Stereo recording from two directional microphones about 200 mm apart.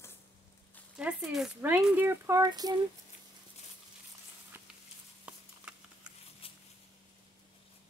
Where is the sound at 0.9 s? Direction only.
5° right (ahead or behind); by 2.7 s 20° right (ahead or behind).